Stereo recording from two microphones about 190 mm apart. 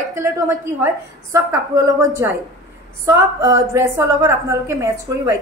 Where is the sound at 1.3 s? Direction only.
15° right (ahead or behind).